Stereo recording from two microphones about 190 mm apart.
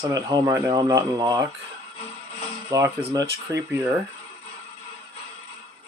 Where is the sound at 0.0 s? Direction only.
20° right (ahead or behind).